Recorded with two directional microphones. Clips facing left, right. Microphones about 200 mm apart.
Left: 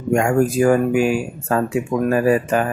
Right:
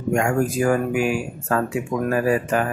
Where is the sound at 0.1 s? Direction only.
30° left (ahead or behind).